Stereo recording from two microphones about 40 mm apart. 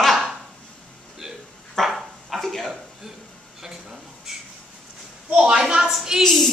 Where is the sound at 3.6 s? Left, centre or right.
Centre.